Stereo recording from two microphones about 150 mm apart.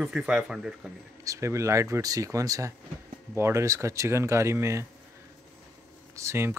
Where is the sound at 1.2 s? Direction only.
20° right (ahead or behind).